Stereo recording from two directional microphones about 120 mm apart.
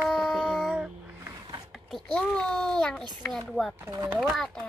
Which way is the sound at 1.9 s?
5° left (ahead or behind).